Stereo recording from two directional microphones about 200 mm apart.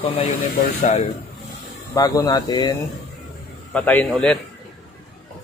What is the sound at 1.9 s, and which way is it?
Speech, 20° left (ahead or behind).